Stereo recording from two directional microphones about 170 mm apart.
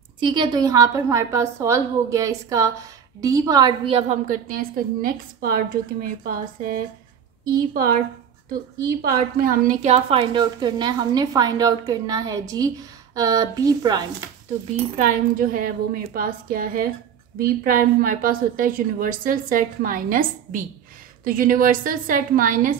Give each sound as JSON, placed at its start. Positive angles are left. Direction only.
{"t": 0.2, "sound": "a woman's voice", "side_deg": -25}
{"t": 3.9, "sound": "a woman's voice", "side_deg": -45}
{"t": 15.0, "sound": "a woman's voice", "side_deg": -55}